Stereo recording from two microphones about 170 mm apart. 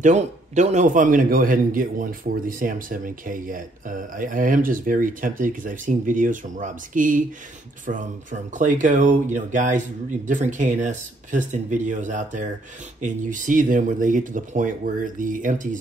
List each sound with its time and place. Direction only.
0.0 s a man's voice: 45° right (ahead or behind)